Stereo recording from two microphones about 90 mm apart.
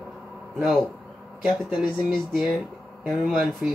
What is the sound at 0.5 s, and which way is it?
Speech, 5° right (ahead or behind).